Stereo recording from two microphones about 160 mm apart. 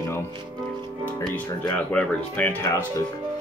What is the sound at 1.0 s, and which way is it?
Speech, 10° left (ahead or behind).